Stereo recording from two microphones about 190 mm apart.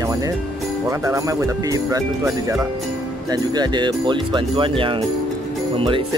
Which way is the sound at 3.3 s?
20° right (ahead or behind).